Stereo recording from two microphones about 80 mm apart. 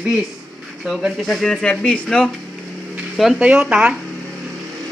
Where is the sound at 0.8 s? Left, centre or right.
Centre.